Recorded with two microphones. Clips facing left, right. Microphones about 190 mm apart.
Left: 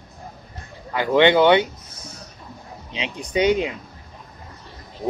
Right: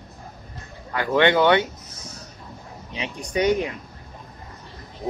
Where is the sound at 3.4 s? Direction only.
20° left (ahead or behind).